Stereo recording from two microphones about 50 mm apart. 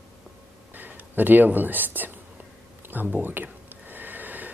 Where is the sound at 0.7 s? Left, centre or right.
Right.